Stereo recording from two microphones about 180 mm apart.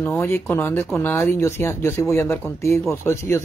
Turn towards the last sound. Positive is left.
turn(degrees=15)  # may be behind; listen again after turning